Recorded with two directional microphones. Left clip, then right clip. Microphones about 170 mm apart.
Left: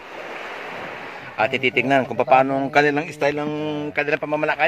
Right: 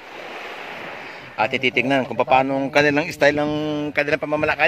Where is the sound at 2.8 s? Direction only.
50° right (ahead or behind); by 3.6 s 65° right (ahead or behind).